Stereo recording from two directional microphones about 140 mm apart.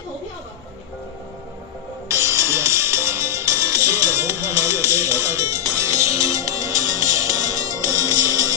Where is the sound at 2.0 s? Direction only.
20° right (ahead or behind).